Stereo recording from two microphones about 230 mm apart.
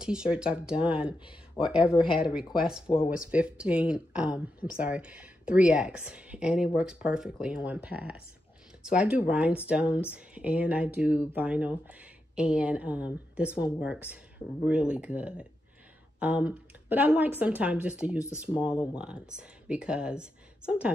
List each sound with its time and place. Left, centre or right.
0.0 s speech: centre
2.0 s speech: left
3.3 s speech: centre